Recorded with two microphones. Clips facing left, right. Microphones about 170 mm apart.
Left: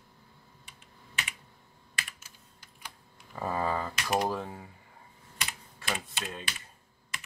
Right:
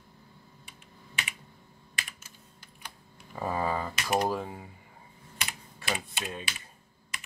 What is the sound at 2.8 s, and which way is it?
Typing, 10° right (ahead or behind).